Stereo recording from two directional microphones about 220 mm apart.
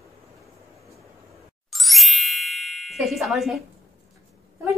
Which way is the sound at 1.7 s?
Centre (ahead or behind).